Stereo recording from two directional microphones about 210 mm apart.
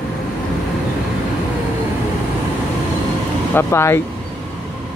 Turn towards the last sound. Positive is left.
turn(degrees=10)  # may be behind; listen again after turning